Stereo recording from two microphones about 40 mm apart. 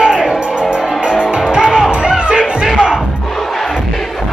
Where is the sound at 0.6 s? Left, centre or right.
Right.